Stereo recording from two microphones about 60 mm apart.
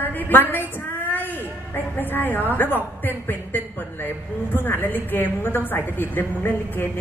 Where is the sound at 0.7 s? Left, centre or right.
Left.